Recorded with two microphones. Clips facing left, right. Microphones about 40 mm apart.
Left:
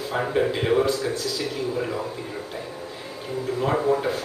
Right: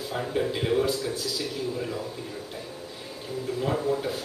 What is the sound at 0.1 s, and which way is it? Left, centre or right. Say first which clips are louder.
Speech: left 5 dB; left.